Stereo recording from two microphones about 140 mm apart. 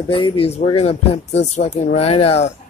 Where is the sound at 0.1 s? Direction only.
40° left (ahead or behind).